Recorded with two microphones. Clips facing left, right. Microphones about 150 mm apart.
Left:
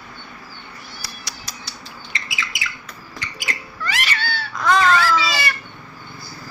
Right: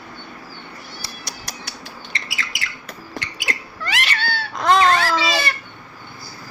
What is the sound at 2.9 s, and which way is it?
Rodents, 70° right (ahead or behind).